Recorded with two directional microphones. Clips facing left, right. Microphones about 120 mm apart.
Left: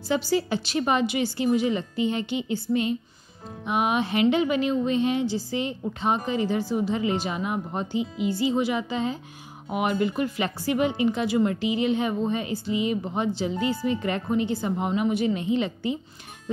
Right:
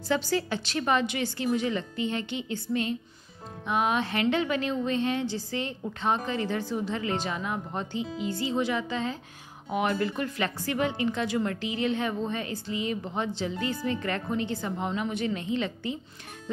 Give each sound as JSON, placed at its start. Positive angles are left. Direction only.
{"t": 0.1, "sound": "a woman's voice", "side_deg": 15}